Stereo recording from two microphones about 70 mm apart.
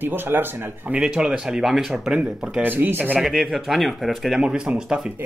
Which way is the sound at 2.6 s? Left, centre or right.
Right.